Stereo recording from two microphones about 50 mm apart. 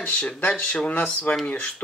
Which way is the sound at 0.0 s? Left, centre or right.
Left.